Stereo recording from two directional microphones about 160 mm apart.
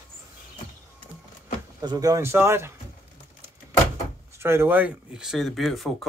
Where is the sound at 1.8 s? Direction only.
25° right (ahead or behind).